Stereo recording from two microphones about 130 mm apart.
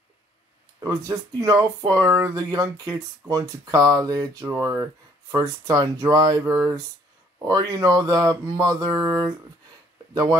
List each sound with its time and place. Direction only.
0.7 s speech: 30° right (ahead or behind)